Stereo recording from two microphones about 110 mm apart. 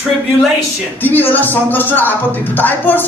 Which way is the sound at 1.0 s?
15° left (ahead or behind).